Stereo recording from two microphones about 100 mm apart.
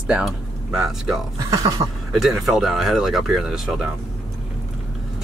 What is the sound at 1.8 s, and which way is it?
Speech, 50° right (ahead or behind).